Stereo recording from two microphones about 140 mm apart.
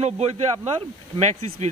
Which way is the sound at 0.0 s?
50° right (ahead or behind).